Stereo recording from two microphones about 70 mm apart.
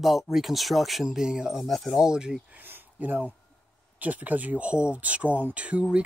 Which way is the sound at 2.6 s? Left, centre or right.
Right.